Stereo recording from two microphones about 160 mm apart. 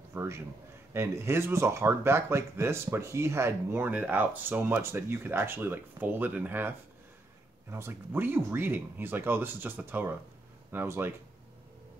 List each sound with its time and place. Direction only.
0.1 s a man's voice: 15° right (ahead or behind)
7.7 s speech: 15° right (ahead or behind)